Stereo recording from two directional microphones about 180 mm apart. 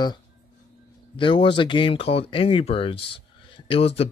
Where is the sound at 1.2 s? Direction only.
30° left (ahead or behind).